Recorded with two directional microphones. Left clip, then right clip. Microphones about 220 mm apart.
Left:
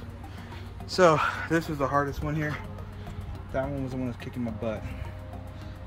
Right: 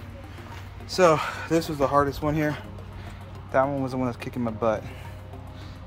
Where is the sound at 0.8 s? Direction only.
25° left (ahead or behind).